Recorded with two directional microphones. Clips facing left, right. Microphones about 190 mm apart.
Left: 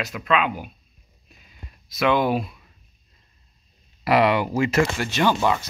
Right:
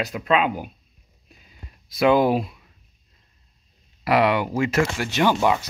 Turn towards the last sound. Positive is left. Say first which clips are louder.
# right 1 dB
turn(degrees=-10)  # may be behind; listen again after turning